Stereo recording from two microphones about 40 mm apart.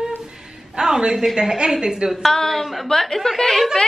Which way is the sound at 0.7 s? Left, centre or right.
Centre.